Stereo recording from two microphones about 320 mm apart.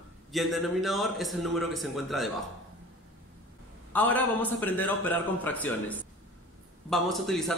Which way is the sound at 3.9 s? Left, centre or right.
Centre.